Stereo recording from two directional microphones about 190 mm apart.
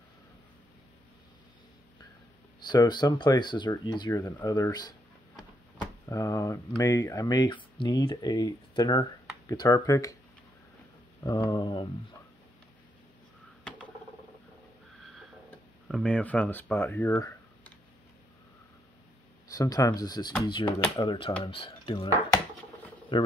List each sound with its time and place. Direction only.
2.6 s speech: 20° left (ahead or behind)
6.0 s speech: 15° left (ahead or behind)
11.2 s speech: 20° left (ahead or behind)
15.9 s speech: 5° left (ahead or behind)
19.5 s speech: 20° left (ahead or behind)